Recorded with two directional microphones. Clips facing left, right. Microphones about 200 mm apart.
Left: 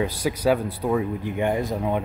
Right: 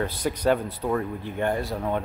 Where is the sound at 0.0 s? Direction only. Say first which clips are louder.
Left 2 dB; 10° left (ahead or behind).